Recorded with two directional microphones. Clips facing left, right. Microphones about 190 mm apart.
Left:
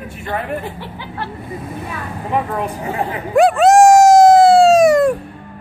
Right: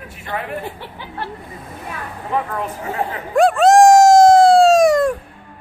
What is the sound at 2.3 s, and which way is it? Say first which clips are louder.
Speech: left 2 dB; 15° left (ahead or behind).